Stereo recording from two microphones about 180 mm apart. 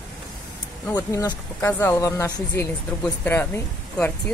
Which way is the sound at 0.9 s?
15° left (ahead or behind).